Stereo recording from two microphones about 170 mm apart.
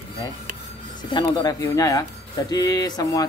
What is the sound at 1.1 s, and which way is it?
A man's voice, 25° left (ahead or behind).